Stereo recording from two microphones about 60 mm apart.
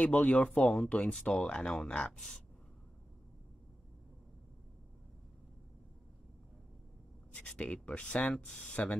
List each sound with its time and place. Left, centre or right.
0.0 s speech: left
2.1 s speech: centre
7.3 s speech: centre